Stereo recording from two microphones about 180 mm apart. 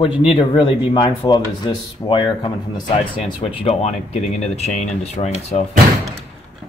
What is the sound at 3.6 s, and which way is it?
Speech, 35° left (ahead or behind).